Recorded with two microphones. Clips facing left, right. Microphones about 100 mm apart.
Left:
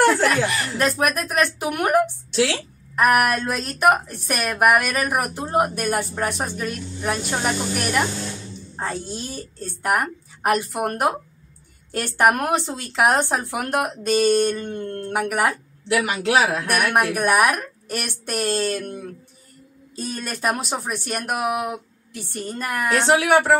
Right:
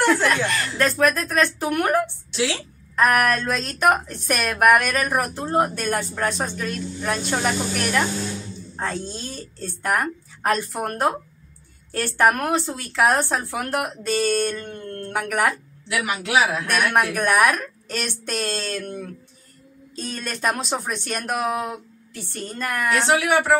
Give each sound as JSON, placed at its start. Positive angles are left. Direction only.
{"t": 0.0, "sound": "a woman's voice", "side_deg": 10}
{"t": 16.7, "sound": "speech", "side_deg": 15}
{"t": 22.8, "sound": "a woman's voice", "side_deg": 30}